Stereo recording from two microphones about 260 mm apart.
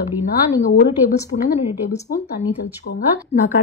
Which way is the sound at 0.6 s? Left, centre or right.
Left.